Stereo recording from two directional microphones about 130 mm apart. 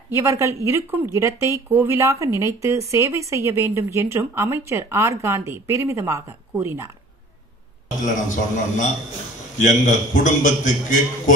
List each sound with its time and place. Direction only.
0.1 s speech: 20° right (ahead or behind)
8.0 s a man's voice: 75° left (ahead or behind)